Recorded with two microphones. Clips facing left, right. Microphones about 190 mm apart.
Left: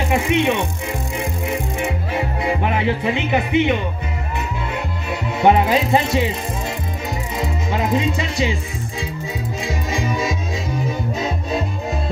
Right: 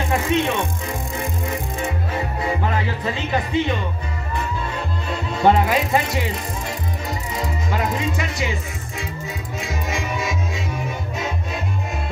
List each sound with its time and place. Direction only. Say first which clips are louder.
0.1 s music: left 3 dB; 15° left (ahead or behind)
2.4 s speech: left 4 dB; 20° left (ahead or behind)
5.4 s speech: left 2 dB; 20° left (ahead or behind)
7.3 s speech: left 2 dB; 20° left (ahead or behind)
9.7 s music: left 3 dB; 35° left (ahead or behind)